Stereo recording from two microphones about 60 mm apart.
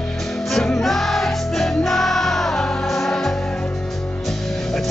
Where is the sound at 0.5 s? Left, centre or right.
Centre.